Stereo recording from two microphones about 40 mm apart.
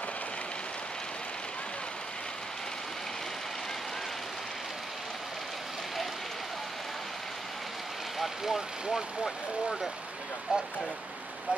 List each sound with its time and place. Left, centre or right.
8.2 s speech: centre
10.5 s speech: right